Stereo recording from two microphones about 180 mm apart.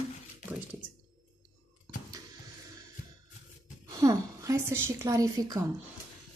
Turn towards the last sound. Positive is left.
turn(degrees=-20)  # may be behind; listen again after turning